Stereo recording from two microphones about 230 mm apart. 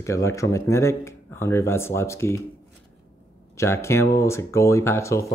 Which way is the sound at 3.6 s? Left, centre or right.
Centre.